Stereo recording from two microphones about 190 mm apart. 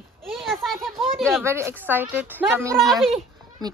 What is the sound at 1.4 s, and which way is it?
A woman's voice, 15° right (ahead or behind).